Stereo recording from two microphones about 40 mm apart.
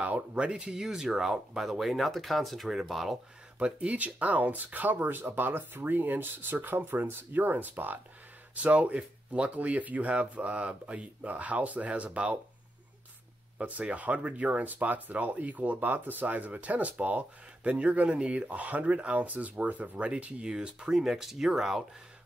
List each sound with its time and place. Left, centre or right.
0.0 s speech: right; by 3.2 s centre
3.6 s speech: right
8.5 s speech: right
13.7 s speech: right
20.4 s speech: right
20.9 s speech: centre